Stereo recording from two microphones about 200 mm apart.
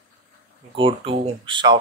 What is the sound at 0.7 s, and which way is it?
Speech, 25° right (ahead or behind).